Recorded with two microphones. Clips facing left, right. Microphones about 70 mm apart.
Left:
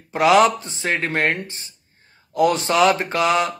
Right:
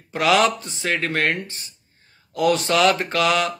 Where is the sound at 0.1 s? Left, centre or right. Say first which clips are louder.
Left 3 dB; left.